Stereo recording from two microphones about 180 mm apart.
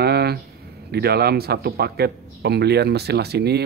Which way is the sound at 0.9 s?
60° right (ahead or behind).